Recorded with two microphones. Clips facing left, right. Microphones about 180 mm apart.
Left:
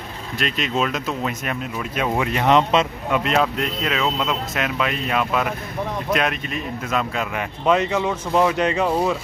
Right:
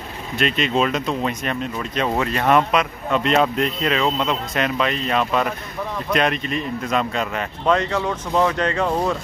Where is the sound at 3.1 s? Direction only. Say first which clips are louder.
Right 2 dB; centre (ahead or behind).